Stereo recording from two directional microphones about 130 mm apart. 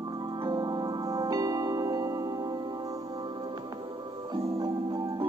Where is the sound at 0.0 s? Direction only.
30° right (ahead or behind).